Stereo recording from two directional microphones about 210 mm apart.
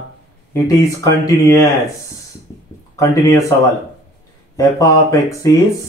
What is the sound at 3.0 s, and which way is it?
Speech, 15° left (ahead or behind).